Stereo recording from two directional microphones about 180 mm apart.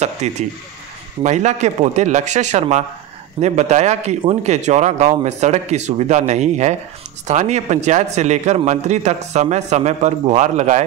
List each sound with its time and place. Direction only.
0.0 s a man's voice: 40° right (ahead or behind)